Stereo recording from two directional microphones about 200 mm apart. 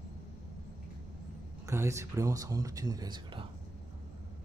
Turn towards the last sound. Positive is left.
turn(degrees=-20)  # may be behind; listen again after turning